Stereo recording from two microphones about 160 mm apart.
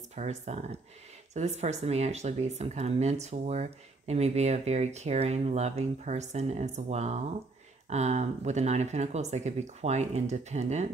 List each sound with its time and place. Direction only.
0.1 s speech: 45° right (ahead or behind)